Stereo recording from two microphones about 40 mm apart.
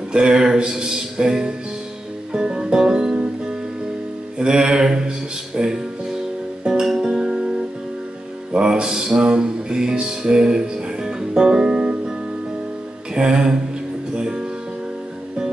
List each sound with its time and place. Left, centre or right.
0.1 s speech: right
2.3 s music: right
4.4 s music: right
8.5 s music: right
13.1 s speech: right
14.1 s music: right